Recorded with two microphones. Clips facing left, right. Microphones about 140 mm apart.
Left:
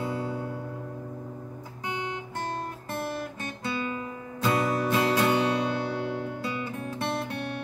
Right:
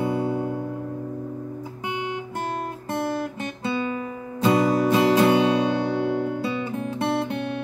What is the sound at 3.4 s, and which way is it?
Guitar, 25° right (ahead or behind).